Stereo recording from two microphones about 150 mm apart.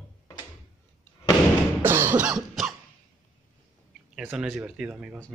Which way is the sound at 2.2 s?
5° right (ahead or behind).